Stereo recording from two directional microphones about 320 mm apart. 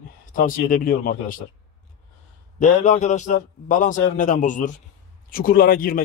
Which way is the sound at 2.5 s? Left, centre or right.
Left.